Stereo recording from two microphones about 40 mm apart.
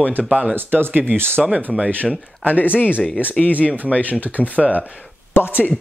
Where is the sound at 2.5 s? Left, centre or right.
Left.